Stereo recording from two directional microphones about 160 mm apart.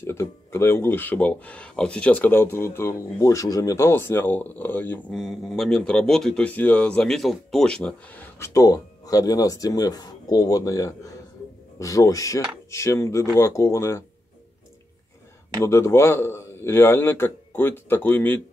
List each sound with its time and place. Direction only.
0.0 s speech: 15° left (ahead or behind)
8.5 s speech: 20° left (ahead or behind)
15.6 s speech: 15° left (ahead or behind)